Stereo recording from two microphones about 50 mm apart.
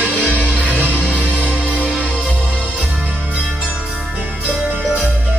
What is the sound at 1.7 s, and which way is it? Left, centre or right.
Music, right.